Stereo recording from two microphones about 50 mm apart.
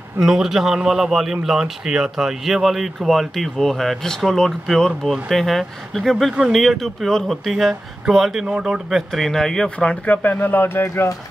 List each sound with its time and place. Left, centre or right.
0.2 s a man's voice: centre
9.1 s speech: centre
10.0 s speech: left